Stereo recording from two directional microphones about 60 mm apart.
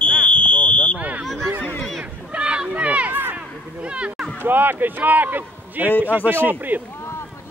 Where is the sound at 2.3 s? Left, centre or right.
Centre.